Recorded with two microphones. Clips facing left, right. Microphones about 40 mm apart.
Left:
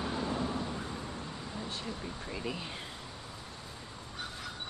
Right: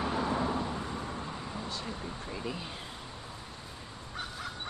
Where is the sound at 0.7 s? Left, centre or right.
Right.